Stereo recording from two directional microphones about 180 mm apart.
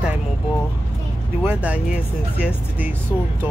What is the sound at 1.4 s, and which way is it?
Speech, 10° right (ahead or behind).